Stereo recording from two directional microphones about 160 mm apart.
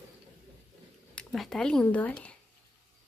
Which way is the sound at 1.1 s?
5° left (ahead or behind).